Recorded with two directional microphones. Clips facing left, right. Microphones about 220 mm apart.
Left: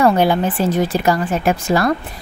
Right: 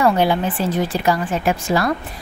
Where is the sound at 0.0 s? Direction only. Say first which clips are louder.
Left 2 dB; 45° left (ahead or behind).